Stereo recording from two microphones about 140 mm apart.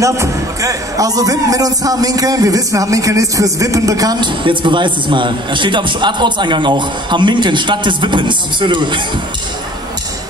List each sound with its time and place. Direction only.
0.0 s speech: 25° right (ahead or behind)